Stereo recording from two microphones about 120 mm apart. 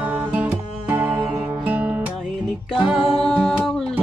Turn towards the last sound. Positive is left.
turn(degrees=5)  # may be behind; listen again after turning